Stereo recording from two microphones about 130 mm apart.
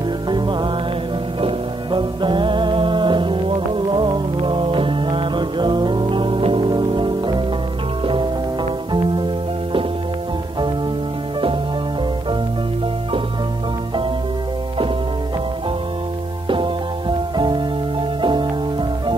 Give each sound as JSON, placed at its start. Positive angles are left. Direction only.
{"t": 0.3, "sound": "music", "side_deg": -35}
{"t": 8.9, "sound": "music", "side_deg": -40}
{"t": 16.4, "sound": "music", "side_deg": -40}
{"t": 18.2, "sound": "music", "side_deg": -40}